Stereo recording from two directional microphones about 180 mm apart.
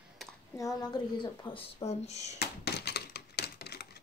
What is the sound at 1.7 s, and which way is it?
Speech, 35° left (ahead or behind).